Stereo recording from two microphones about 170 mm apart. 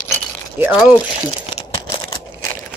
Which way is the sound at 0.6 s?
10° right (ahead or behind).